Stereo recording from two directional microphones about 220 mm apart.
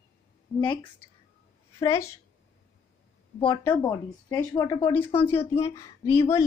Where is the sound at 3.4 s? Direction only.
15° left (ahead or behind).